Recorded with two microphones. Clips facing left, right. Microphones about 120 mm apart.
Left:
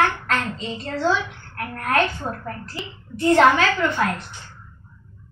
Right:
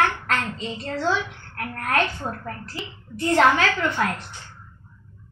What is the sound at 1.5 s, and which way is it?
Speech, 20° left (ahead or behind).